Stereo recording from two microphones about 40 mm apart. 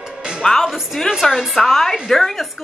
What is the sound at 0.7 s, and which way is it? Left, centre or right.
A woman's voice, centre.